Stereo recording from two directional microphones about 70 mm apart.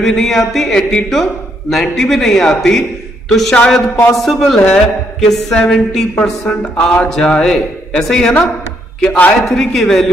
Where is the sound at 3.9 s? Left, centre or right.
Left.